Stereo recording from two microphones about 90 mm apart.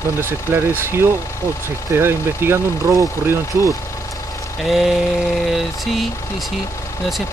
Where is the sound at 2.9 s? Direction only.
40° right (ahead or behind).